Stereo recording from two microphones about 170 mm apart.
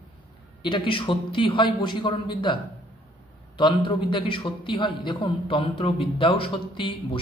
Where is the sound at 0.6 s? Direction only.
30° left (ahead or behind).